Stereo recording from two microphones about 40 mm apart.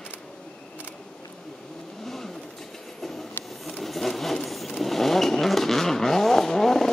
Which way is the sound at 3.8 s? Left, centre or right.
Centre.